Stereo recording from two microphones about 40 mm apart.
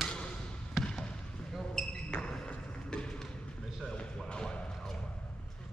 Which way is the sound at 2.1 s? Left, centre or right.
Left.